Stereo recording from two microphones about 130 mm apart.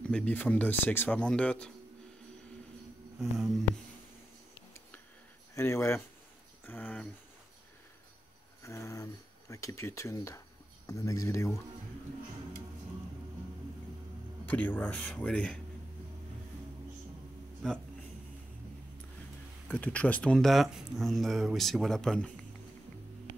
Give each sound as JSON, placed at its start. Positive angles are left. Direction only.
{"t": 0.0, "sound": "speech", "side_deg": 10}
{"t": 3.2, "sound": "speech", "side_deg": -5}
{"t": 5.5, "sound": "speech", "side_deg": 20}
{"t": 8.6, "sound": "speech", "side_deg": 25}
{"t": 14.4, "sound": "speech", "side_deg": 15}
{"t": 17.6, "sound": "speech", "side_deg": 5}
{"t": 19.7, "sound": "speech", "side_deg": 10}